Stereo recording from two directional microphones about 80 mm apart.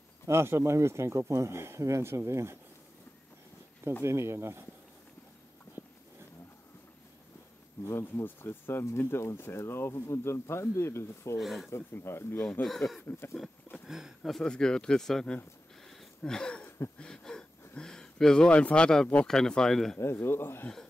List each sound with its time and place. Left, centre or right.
0.3 s speech: right
4.0 s speech: right
8.0 s speech: left
11.3 s speech: centre
11.7 s speech: left
12.6 s speech: centre
13.8 s speech: centre
14.4 s speech: centre
15.9 s a sound: centre
19.2 s speech: centre
20.0 s speech: left